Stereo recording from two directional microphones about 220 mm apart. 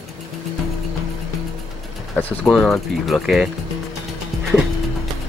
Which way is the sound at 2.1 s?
5° left (ahead or behind).